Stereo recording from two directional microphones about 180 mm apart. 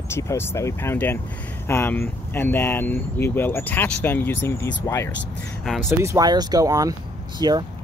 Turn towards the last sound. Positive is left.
turn(degrees=-20)  # may be behind; listen again after turning